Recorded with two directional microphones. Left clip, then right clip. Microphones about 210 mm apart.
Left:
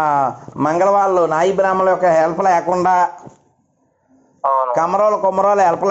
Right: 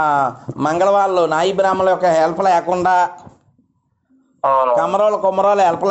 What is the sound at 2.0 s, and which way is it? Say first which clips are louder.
A man's voice: even; 20° left (ahead or behind).